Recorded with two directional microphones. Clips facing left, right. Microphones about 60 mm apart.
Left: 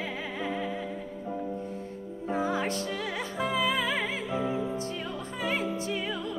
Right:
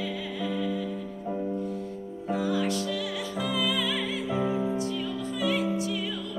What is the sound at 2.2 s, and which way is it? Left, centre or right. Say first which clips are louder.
Music: right 1 dB; left.